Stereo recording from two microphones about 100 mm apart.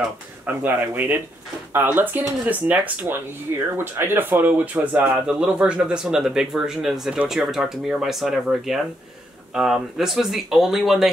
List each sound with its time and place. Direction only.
0.5 s speech: 20° right (ahead or behind); by 11.1 s centre (ahead or behind)